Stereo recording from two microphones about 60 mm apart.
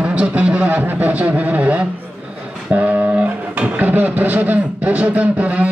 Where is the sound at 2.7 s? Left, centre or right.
Right.